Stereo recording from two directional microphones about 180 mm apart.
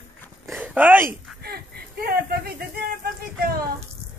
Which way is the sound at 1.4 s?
60° right (ahead or behind).